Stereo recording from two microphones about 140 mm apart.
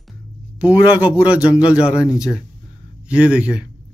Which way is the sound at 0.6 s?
10° right (ahead or behind).